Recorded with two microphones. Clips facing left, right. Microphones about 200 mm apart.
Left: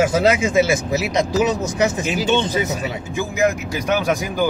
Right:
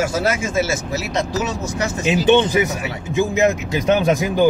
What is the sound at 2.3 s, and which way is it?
Speech, 15° right (ahead or behind).